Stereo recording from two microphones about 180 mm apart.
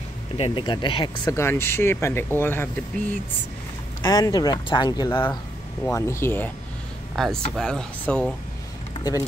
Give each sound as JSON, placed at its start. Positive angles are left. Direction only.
{"t": 0.4, "sound": "speech", "side_deg": 25}
{"t": 1.3, "sound": "speech", "side_deg": 15}
{"t": 4.0, "sound": "speech", "side_deg": 20}
{"t": 7.2, "sound": "speech", "side_deg": 0}